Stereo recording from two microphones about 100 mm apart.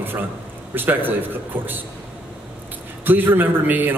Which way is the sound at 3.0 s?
20° right (ahead or behind).